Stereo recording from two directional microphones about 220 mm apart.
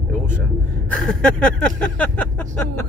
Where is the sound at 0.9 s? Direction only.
5° left (ahead or behind).